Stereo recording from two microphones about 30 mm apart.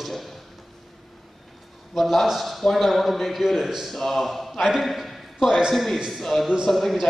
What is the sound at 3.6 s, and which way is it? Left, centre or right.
Speech, centre.